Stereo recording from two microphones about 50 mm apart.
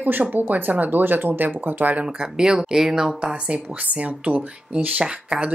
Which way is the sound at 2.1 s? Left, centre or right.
Centre.